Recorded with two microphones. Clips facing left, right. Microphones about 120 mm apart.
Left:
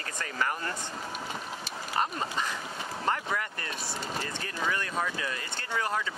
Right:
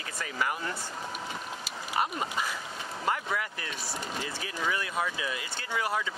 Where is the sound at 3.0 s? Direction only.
5° right (ahead or behind).